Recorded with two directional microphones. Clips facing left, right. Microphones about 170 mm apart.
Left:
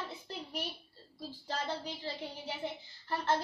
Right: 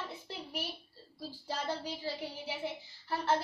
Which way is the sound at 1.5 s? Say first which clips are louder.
Right 1 dB; 10° right (ahead or behind).